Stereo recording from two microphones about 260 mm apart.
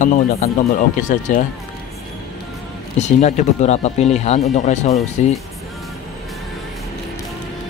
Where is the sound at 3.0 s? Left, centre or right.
Left.